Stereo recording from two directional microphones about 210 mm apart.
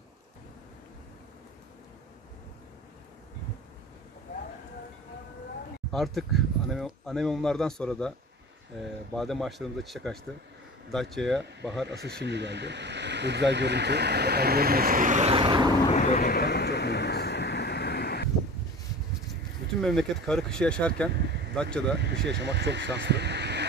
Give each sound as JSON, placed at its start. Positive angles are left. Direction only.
{"t": 5.9, "sound": "speech", "side_deg": 0}
{"t": 9.1, "sound": "speech", "side_deg": 0}
{"t": 11.8, "sound": "speech", "side_deg": -50}
{"t": 15.9, "sound": "vehicle", "side_deg": 35}
{"t": 19.8, "sound": "speech", "side_deg": 5}
{"t": 21.9, "sound": "speech", "side_deg": -55}